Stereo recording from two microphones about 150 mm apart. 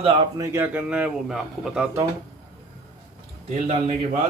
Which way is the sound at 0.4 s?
15° right (ahead or behind).